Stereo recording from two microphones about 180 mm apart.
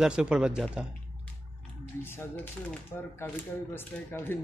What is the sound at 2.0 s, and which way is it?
Speech, 10° left (ahead or behind).